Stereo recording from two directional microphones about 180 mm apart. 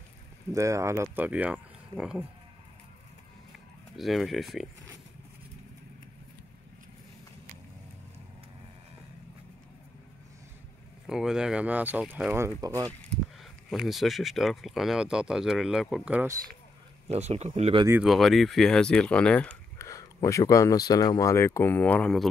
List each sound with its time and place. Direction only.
0.5 s speech: 15° right (ahead or behind)
3.9 s speech: centre (ahead or behind)
11.1 s speech: 5° right (ahead or behind); by 12.9 s 20° right (ahead or behind)
13.4 s speech: centre (ahead or behind)
17.1 s speech: 35° right (ahead or behind)
18.0 s speech: centre (ahead or behind)
19.9 s speech: 15° left (ahead or behind)